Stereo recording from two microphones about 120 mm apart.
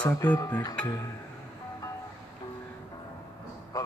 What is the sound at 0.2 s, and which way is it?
Speech, 35° left (ahead or behind).